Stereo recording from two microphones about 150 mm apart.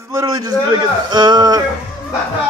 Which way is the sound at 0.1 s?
20° right (ahead or behind).